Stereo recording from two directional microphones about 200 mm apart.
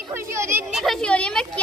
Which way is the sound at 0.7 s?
Centre (ahead or behind).